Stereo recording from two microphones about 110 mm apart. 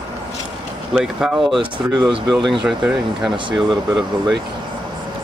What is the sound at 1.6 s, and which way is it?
Speech, 45° right (ahead or behind).